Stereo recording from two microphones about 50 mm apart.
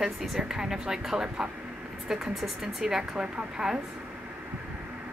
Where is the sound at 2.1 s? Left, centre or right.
Centre.